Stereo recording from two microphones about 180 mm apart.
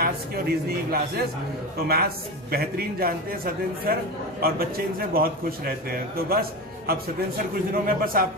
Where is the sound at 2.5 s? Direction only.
55° right (ahead or behind).